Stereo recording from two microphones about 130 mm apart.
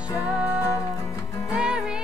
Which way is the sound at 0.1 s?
5° right (ahead or behind).